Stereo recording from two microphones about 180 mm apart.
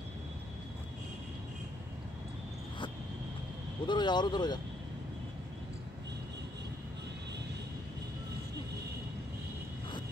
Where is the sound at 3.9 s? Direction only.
25° left (ahead or behind).